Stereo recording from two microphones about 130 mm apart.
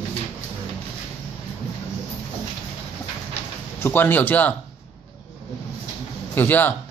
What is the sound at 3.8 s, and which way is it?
Speech, 15° left (ahead or behind).